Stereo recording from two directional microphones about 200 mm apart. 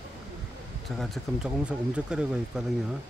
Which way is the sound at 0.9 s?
Centre (ahead or behind).